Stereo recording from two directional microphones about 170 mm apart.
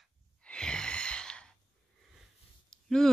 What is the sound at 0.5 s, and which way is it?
Sigh, 5° left (ahead or behind).